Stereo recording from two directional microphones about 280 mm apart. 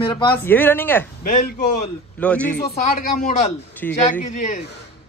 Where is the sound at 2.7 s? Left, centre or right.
Left.